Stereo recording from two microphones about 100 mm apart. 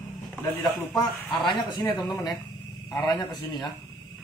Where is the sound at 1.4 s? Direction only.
45° left (ahead or behind).